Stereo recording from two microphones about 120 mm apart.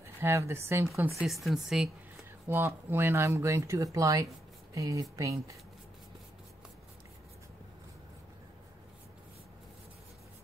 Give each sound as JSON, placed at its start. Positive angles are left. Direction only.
{"t": 0.0, "sound": "speech", "side_deg": -25}
{"t": 1.2, "sound": "speech", "side_deg": 0}
{"t": 2.4, "sound": "speech", "side_deg": -20}